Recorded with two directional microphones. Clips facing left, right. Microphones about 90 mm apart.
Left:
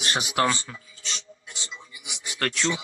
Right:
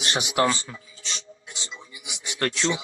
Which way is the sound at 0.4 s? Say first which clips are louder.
Right 2 dB; 30° right (ahead or behind).